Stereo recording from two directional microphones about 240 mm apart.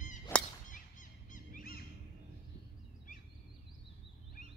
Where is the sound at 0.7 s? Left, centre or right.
Left.